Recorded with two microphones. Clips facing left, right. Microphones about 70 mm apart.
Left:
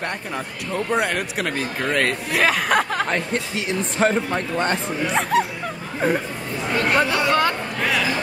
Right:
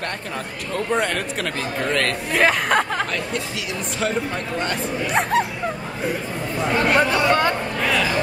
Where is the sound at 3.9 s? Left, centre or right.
Left.